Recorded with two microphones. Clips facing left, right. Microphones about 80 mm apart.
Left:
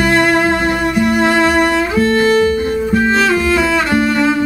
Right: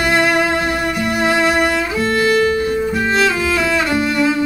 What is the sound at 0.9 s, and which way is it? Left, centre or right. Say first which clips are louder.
Music: left 5 dB; centre.